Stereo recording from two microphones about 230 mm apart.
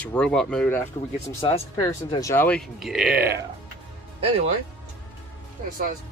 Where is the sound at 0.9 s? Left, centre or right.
Left; by 3.1 s centre.